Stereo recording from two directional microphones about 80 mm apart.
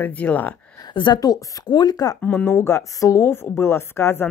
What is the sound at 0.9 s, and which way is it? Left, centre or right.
Speech, left.